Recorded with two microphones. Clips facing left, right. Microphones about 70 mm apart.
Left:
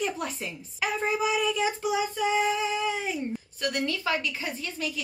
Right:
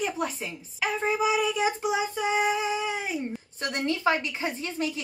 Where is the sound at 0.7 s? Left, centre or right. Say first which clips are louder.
Right 1 dB; centre.